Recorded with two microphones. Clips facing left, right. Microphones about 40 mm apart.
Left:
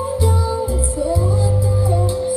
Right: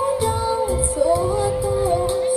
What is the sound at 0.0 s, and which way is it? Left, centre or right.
Music, right.